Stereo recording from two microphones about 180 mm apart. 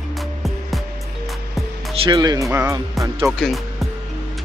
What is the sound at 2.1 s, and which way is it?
Speech, 20° right (ahead or behind).